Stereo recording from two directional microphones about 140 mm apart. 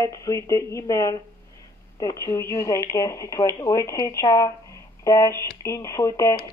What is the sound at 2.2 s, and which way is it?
Speech, 20° left (ahead or behind).